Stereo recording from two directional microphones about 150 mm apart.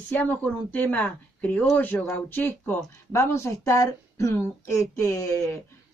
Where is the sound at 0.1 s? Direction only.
10° left (ahead or behind).